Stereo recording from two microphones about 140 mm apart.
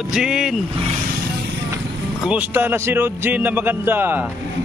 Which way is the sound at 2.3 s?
10° right (ahead or behind).